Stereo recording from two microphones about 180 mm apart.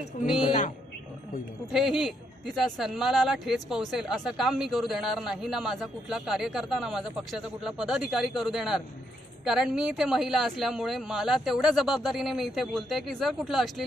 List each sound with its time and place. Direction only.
0.2 s a man's voice: 40° left (ahead or behind)
1.7 s speech: centre (ahead or behind)